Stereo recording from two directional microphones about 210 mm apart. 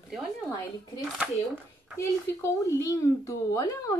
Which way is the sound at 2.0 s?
15° left (ahead or behind).